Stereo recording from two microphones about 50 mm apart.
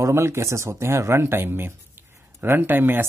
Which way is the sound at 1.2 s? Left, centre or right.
Right.